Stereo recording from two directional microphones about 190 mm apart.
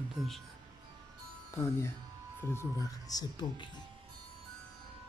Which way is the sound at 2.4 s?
15° left (ahead or behind).